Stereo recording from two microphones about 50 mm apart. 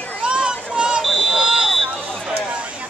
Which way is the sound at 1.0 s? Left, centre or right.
Centre.